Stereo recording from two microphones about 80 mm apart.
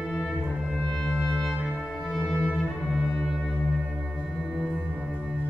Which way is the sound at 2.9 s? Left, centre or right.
Centre.